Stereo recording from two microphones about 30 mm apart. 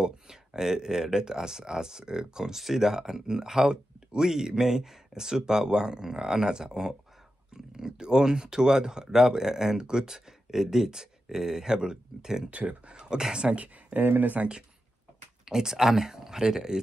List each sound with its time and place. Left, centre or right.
0.0 s speech: right
12.4 s speech: right
12.9 s speech: right
13.9 s speech: right
15.4 s speech: centre